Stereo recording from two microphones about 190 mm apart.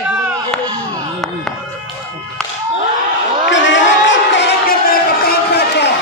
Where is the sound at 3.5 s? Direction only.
75° left (ahead or behind).